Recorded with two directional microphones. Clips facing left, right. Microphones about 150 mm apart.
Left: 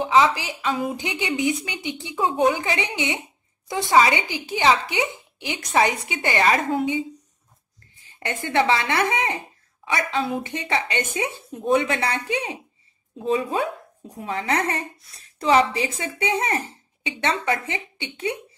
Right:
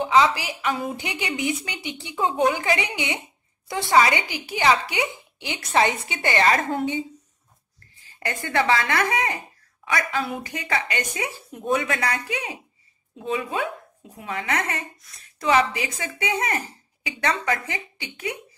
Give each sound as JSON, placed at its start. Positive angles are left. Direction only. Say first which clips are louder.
{"t": 0.0, "sound": "a woman's voice", "louder": "left 1 dB", "side_deg": 20}
{"t": 8.0, "sound": "a woman's voice", "louder": "left 1 dB", "side_deg": 20}